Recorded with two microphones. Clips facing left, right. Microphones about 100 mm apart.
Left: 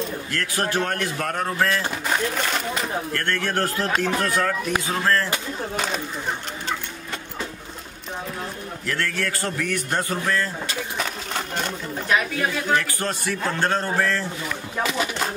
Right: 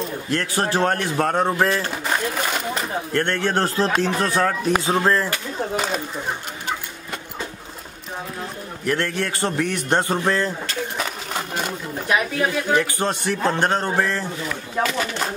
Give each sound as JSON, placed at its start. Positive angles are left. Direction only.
{"t": 0.3, "sound": "a man's voice", "side_deg": -25}
{"t": 2.0, "sound": "speech", "side_deg": -5}
{"t": 3.1, "sound": "a man's voice", "side_deg": -25}
{"t": 4.8, "sound": "speech", "side_deg": -15}
{"t": 8.8, "sound": "a man's voice", "side_deg": -20}
{"t": 11.0, "sound": "a sound", "side_deg": -5}
{"t": 12.4, "sound": "a man's voice", "side_deg": -20}